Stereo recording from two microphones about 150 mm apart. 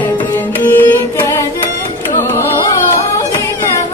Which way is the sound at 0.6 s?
15° left (ahead or behind).